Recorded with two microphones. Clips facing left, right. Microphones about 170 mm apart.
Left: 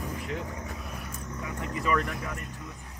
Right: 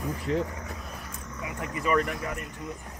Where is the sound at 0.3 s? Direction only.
35° right (ahead or behind).